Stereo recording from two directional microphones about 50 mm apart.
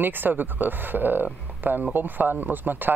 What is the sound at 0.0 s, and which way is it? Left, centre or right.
Speech, right.